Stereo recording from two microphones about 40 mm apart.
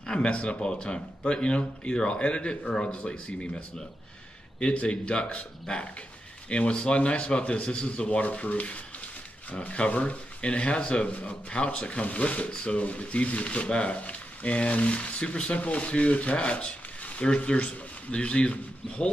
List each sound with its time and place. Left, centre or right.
0.0 s speech: left
11.1 s speech: left